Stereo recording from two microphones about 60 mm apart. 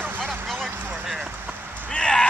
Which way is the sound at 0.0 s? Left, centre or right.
Centre.